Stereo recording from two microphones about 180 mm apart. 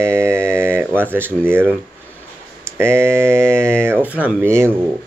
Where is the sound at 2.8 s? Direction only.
15° right (ahead or behind).